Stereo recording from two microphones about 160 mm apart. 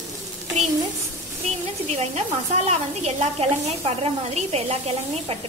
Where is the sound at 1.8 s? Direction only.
45° right (ahead or behind).